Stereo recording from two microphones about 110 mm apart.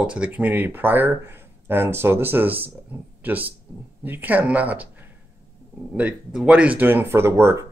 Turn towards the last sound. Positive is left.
turn(degrees=-25)  # may be behind; listen again after turning